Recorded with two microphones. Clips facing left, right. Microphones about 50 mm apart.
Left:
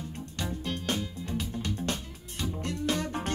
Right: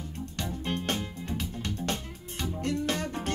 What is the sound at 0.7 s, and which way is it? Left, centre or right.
Music, right.